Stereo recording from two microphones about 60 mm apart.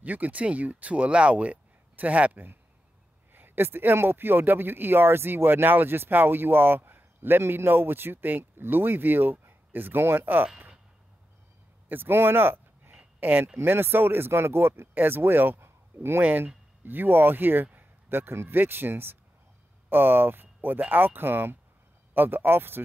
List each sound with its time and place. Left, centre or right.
0.0 s speech: right
3.3 s speech: right
11.9 s speech: right
16.2 s speech: right